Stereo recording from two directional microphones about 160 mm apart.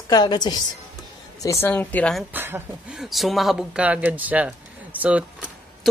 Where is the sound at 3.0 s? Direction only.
Centre (ahead or behind).